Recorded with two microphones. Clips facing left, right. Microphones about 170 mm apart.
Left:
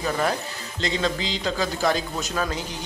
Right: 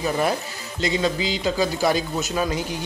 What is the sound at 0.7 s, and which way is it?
Speech, 10° right (ahead or behind).